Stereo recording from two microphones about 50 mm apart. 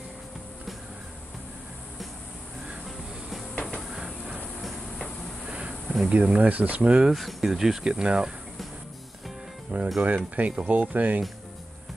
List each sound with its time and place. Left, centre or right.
3.8 s train: centre
4.6 s train: centre
5.4 s a sound: right
6.1 s speech: right
7.1 s speech: centre
7.8 s speech: centre
9.7 s speech: right